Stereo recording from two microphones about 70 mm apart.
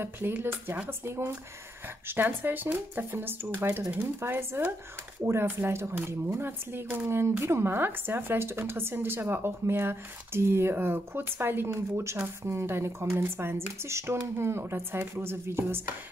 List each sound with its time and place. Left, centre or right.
0.0 s speech: right
11.7 s speech: right